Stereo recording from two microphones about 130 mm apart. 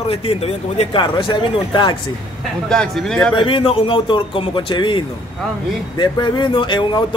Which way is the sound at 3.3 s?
40° left (ahead or behind).